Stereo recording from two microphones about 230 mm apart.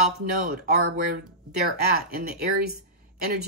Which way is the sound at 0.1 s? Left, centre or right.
Right.